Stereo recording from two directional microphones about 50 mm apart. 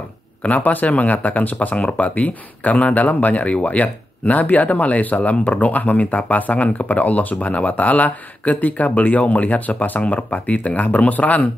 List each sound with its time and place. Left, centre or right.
0.4 s speech: left